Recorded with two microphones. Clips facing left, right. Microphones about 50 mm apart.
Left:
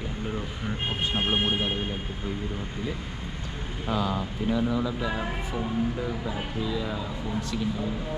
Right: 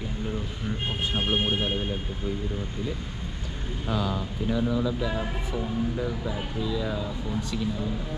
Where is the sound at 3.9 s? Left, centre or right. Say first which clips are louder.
Left 1 dB; centre.